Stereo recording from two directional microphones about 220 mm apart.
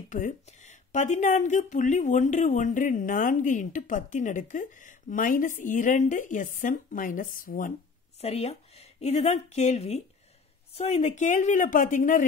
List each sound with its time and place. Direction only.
0.1 s speech: 35° left (ahead or behind)
8.2 s a woman's voice: 30° left (ahead or behind)